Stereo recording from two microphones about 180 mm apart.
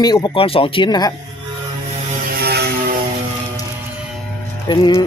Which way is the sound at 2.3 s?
60° right (ahead or behind).